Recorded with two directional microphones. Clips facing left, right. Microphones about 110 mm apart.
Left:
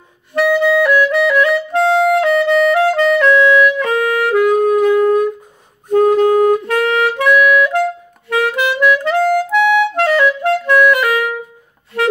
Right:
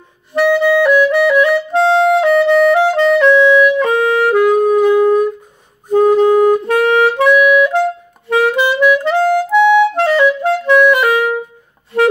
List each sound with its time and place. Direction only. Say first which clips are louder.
0.3 s clarinet: right 1 dB; 15° right (ahead or behind)
2.3 s music: right 2 dB; 30° right (ahead or behind)
4.5 s wind instrument: right 1 dB; 5° right (ahead or behind)
5.9 s music: right 1 dB; 5° right (ahead or behind)
6.8 s music: right 3 dB; 30° right (ahead or behind)
7.2 s music: right 2 dB; 20° right (ahead or behind)
8.3 s clarinet: right 3 dB; 25° right (ahead or behind)